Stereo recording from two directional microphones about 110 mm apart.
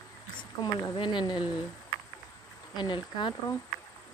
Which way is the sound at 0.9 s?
45° left (ahead or behind).